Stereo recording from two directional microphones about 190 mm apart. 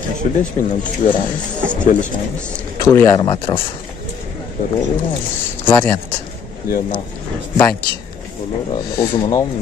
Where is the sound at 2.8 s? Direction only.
15° left (ahead or behind).